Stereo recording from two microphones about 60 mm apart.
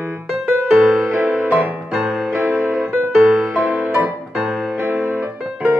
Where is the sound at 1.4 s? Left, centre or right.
Right.